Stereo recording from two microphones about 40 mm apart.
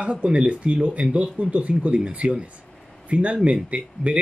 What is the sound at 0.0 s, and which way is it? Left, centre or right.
Speech, right.